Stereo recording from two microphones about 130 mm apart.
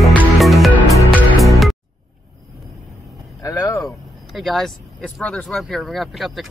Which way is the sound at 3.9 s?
Centre (ahead or behind).